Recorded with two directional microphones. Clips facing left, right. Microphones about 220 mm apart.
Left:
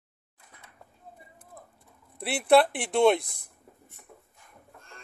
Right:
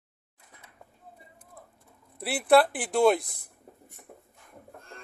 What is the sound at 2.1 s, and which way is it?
Speech, centre (ahead or behind).